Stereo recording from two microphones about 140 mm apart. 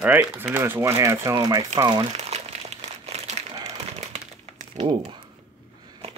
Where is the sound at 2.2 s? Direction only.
50° right (ahead or behind).